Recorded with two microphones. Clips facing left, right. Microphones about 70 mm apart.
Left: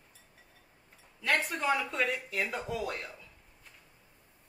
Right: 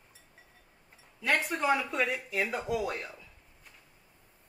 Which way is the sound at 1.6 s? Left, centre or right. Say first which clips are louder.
Right 2 dB; centre.